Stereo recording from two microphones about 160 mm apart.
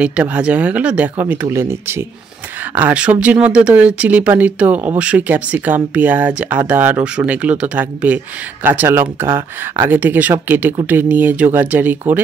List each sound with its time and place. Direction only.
0.0 s speech: 10° right (ahead or behind)